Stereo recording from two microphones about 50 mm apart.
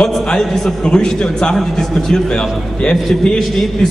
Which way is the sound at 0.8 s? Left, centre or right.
Centre.